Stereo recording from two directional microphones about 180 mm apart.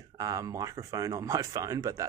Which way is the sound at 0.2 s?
20° right (ahead or behind).